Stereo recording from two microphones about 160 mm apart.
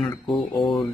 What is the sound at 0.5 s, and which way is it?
Speech, 20° left (ahead or behind).